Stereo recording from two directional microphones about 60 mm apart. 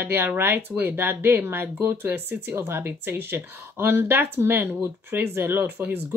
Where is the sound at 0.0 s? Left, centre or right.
Right.